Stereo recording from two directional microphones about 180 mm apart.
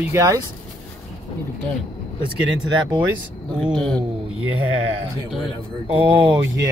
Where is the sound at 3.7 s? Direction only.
5° left (ahead or behind).